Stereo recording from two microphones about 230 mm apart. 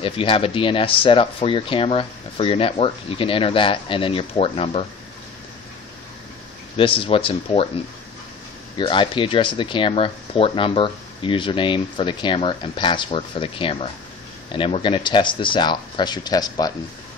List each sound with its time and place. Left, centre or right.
0.0 s speech: left
6.8 s speech: left